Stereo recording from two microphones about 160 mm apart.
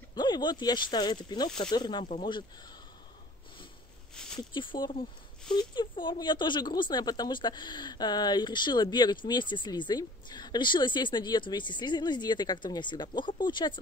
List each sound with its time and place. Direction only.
0.1 s speech: 25° left (ahead or behind)
4.1 s a sound: 5° left (ahead or behind)
4.4 s speech: 30° left (ahead or behind)